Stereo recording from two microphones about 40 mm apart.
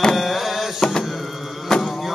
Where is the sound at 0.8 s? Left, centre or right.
Centre.